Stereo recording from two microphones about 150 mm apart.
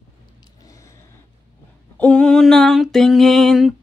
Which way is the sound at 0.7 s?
20° left (ahead or behind).